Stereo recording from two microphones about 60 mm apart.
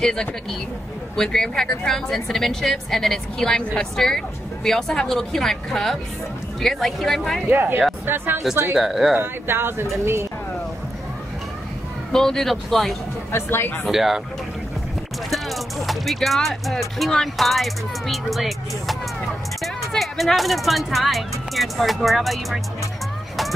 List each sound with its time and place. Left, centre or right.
0.0 s a woman's voice: centre
7.4 s speech: right
8.7 s speech: centre
9.2 s speech: right
12.1 s speech: centre
13.3 s a woman's voice: left
13.8 s speech: centre
15.2 s speech: centre